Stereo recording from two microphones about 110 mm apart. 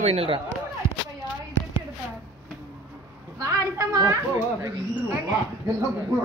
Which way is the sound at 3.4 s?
30° right (ahead or behind).